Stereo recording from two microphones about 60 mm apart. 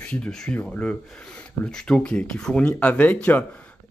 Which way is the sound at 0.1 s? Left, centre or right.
Centre.